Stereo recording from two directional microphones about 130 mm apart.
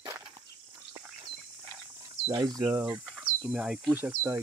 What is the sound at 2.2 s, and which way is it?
Speech, 30° right (ahead or behind).